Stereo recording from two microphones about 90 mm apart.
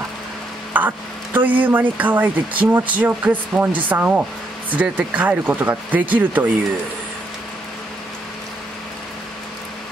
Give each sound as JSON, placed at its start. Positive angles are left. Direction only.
{"t": 0.7, "sound": "speech", "side_deg": -20}